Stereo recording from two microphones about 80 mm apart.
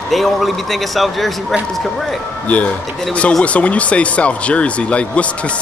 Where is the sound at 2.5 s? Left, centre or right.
Centre.